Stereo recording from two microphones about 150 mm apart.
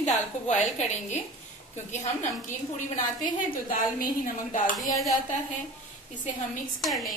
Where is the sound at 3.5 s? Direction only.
70° left (ahead or behind).